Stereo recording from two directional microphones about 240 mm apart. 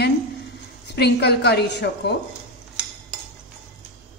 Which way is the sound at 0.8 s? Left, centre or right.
Left.